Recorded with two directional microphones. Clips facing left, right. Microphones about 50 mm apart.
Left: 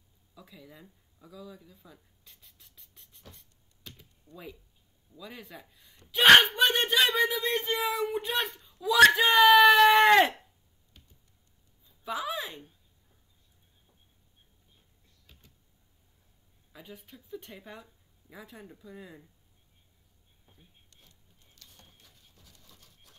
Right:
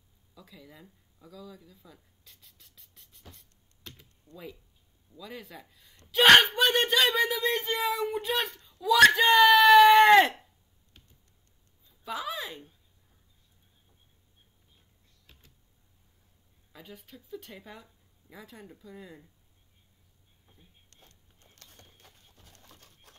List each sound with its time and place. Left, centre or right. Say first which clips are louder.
0.3 s speech: even; centre
2.6 s a sound: even; centre
3.3 s vehicle: even; centre
5.1 s speech: right 2 dB; centre
6.1 s a sound: even; centre
7.2 s speech: even; centre
12.0 s a woman's voice: left 1 dB; centre
16.7 s speech: even; centre
21.4 s a sound: right 2 dB; right